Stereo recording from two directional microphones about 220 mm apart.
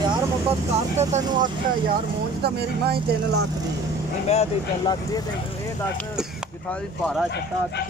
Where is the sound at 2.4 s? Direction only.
45° right (ahead or behind).